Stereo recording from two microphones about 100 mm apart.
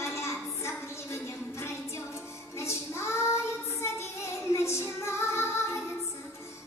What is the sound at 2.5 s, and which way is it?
Child singing, 25° left (ahead or behind).